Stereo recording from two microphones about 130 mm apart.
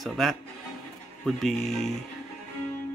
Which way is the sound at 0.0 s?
Centre (ahead or behind).